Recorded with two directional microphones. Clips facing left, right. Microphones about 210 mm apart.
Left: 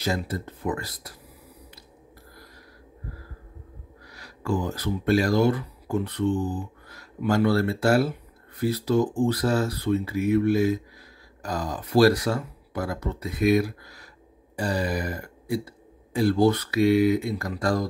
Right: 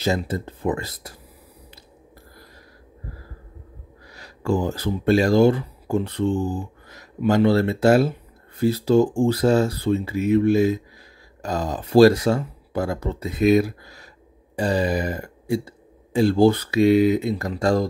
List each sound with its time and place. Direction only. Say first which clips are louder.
0.0 s speech: right 5 dB; 25° right (ahead or behind)
4.1 s speech: right 4 dB; 25° right (ahead or behind)